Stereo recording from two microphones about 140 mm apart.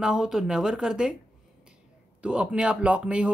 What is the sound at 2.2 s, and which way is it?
Speech, 10° right (ahead or behind).